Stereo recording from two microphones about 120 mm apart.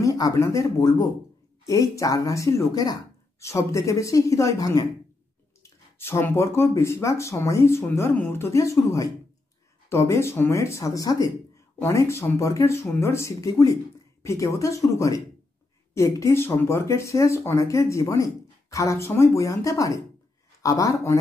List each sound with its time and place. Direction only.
0.0 s speech: 30° left (ahead or behind)